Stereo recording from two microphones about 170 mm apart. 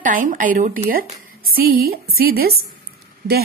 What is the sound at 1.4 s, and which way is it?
A woman's voice, 60° right (ahead or behind).